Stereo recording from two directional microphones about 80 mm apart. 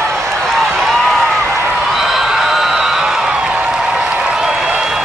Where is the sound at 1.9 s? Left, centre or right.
Centre.